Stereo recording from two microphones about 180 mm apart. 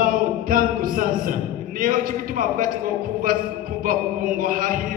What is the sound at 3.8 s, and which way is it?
Speech, 50° right (ahead or behind).